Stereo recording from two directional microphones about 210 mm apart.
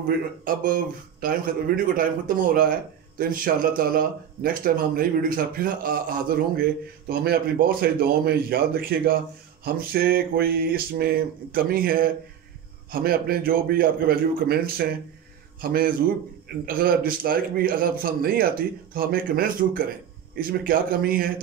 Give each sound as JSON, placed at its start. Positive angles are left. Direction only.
{"t": 0.7, "sound": "speech", "side_deg": -45}